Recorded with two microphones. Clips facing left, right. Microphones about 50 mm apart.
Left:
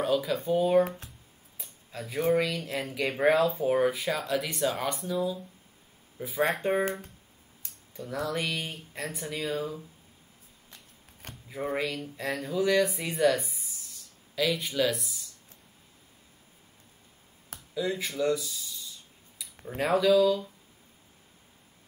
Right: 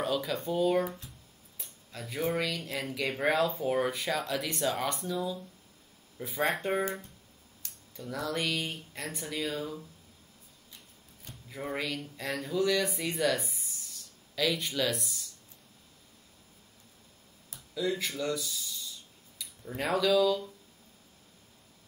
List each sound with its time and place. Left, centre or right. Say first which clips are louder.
0.0 s speech: left 4 dB; centre
0.8 s speech: left 1 dB; left
1.9 s speech: left 6 dB; centre
6.8 s speech: left 3 dB; left
7.9 s speech: left 2 dB; centre
11.4 s speech: left 4 dB; centre
17.7 s speech: left 2 dB; centre
19.8 s speech: left 4 dB; centre